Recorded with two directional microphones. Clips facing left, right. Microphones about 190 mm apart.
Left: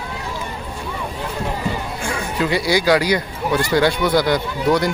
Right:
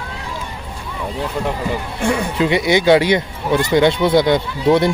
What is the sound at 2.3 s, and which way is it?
Speech, 20° right (ahead or behind).